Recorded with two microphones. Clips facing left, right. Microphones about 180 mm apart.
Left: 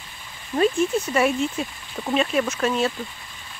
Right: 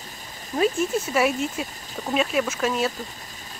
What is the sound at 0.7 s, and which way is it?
Speech, 40° right (ahead or behind).